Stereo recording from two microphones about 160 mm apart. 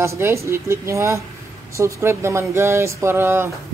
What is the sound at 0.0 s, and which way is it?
Speech, 20° right (ahead or behind).